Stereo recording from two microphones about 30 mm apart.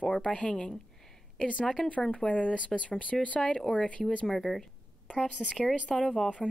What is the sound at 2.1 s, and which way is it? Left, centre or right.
Speech, left.